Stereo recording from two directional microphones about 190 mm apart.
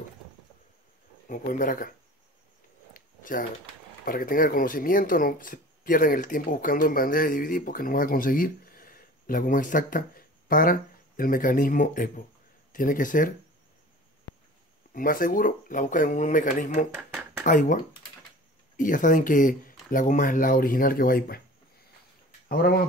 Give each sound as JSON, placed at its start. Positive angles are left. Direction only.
{"t": 1.2, "sound": "speech", "side_deg": 45}
{"t": 2.9, "sound": "a sound", "side_deg": 45}
{"t": 4.0, "sound": "speech", "side_deg": 50}
{"t": 15.0, "sound": "speech", "side_deg": 45}
{"t": 22.5, "sound": "speech", "side_deg": 55}